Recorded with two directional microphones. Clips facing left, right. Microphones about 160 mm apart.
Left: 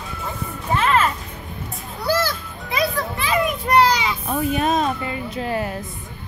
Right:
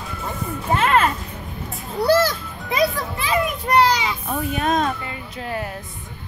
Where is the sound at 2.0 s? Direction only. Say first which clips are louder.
Right 5 dB; 30° right (ahead or behind).